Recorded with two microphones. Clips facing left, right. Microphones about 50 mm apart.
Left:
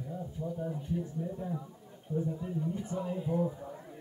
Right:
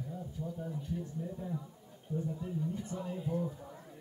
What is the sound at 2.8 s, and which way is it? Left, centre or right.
Speech, centre.